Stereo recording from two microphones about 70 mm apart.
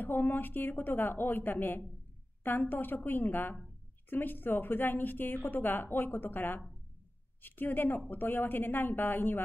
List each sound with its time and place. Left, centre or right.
0.0 s a woman's voice: left